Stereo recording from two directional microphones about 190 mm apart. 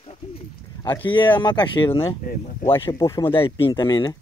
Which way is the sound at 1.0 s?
25° left (ahead or behind).